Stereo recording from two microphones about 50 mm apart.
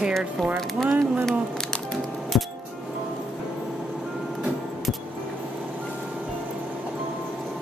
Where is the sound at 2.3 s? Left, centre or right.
Centre.